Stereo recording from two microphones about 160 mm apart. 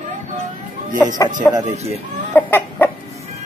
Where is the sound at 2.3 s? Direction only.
15° left (ahead or behind).